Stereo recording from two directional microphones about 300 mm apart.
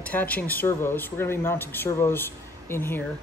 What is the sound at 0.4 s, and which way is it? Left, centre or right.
Speech, centre.